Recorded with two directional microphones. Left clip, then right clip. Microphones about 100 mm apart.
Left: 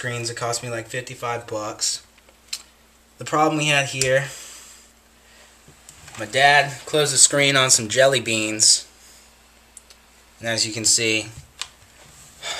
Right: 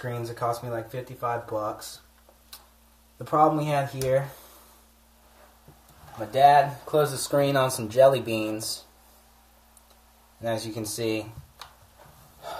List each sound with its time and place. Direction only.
0.0 s speech: 30° left (ahead or behind)
3.2 s speech: 35° left (ahead or behind)
6.1 s speech: 30° left (ahead or behind)
10.4 s speech: 35° left (ahead or behind)